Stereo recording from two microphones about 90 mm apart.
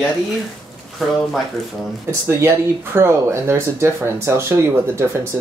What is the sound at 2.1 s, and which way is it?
Speech, 30° right (ahead or behind).